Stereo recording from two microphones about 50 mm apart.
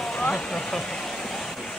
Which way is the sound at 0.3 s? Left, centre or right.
Centre.